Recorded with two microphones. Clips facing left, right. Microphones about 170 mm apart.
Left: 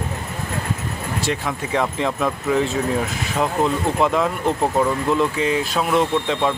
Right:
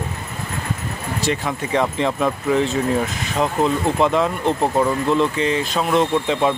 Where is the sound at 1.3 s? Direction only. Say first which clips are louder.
Right 3 dB; centre (ahead or behind).